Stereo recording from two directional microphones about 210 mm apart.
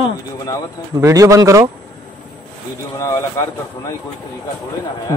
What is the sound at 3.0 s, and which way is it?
Speech, 15° left (ahead or behind).